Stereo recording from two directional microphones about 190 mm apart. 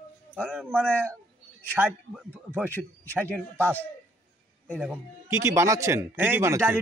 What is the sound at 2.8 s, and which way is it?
Speech, 5° right (ahead or behind).